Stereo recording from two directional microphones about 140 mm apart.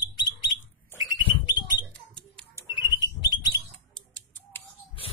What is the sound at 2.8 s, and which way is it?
Bird, 30° left (ahead or behind).